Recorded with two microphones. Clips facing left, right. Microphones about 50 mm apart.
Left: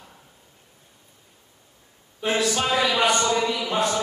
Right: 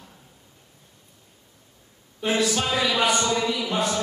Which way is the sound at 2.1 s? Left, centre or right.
Centre.